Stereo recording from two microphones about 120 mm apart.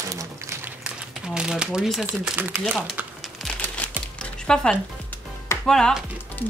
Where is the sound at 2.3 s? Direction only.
15° right (ahead or behind).